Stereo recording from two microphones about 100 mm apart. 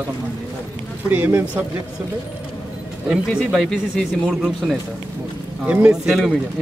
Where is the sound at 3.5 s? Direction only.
Centre (ahead or behind).